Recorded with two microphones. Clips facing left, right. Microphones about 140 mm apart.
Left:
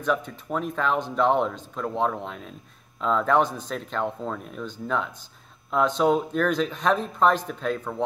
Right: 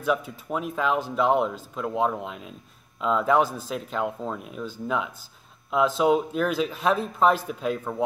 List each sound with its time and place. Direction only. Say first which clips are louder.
0.0 s speech: even; 5° right (ahead or behind)